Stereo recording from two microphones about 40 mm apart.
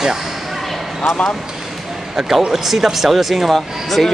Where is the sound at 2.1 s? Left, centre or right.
Centre.